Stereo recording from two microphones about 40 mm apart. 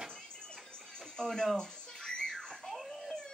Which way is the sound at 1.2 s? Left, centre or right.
Centre.